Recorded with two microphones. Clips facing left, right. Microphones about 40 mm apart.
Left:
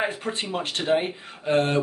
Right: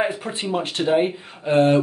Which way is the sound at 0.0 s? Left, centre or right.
Centre.